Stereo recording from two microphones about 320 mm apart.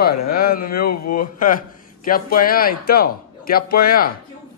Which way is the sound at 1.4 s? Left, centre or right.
Left.